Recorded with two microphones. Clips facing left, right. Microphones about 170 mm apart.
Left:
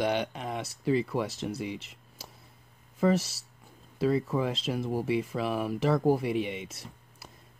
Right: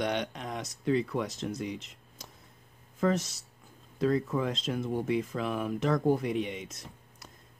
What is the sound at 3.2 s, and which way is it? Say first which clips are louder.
Speech: right 1 dB; 30° left (ahead or behind).